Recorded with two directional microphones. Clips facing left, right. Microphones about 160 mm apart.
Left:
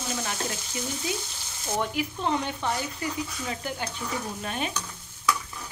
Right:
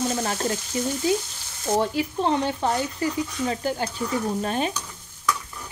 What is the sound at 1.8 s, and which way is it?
Frying, 30° right (ahead or behind).